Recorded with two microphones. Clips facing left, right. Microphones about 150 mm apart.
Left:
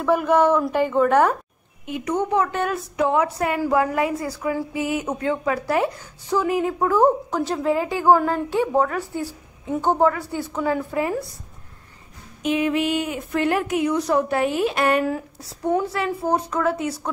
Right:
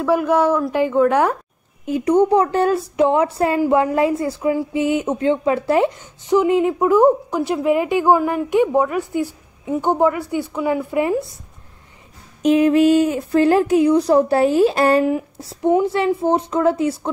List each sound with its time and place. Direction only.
0.0 s a woman's voice: 10° right (ahead or behind)
1.9 s a woman's voice: 35° right (ahead or behind)
12.4 s a woman's voice: 40° right (ahead or behind)